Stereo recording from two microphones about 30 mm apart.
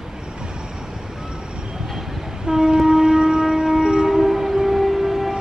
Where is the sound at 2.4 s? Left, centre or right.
Right.